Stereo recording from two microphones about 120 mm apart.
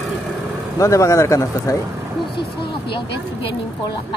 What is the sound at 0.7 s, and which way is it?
Speech, 25° left (ahead or behind).